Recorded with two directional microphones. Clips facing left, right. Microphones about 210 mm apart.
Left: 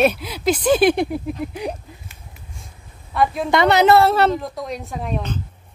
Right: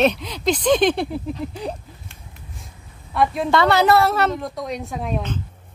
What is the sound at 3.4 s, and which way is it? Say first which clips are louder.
Speech: left 3 dB; 20° left (ahead or behind).